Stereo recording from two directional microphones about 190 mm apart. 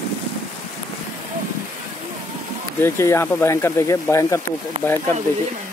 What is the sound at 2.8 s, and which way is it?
Speech, 15° left (ahead or behind).